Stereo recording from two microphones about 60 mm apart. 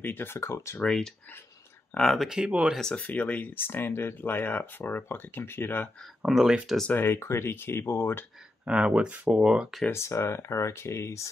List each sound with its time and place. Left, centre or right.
0.0 s speech: left
0.8 s speech: centre
2.1 s speech: centre
2.8 s speech: centre; by 5.9 s left
6.2 s speech: centre
6.9 s speech: left
8.6 s speech: centre
9.8 s speech: left